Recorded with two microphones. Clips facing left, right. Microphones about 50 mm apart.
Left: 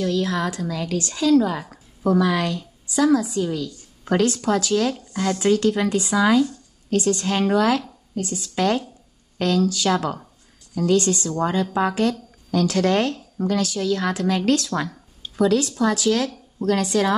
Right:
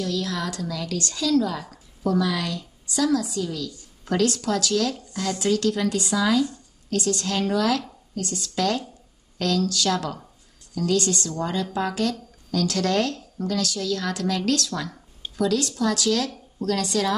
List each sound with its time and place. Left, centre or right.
0.0 s a woman's voice: left